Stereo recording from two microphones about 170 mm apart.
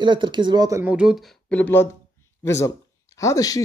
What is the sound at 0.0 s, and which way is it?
Speech, 25° right (ahead or behind).